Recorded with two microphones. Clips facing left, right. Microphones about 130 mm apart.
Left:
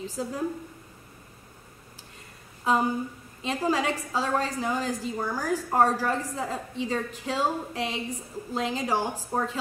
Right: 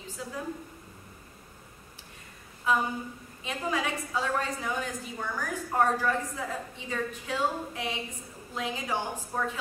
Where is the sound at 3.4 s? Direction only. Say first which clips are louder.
Left 5 dB; 35° left (ahead or behind).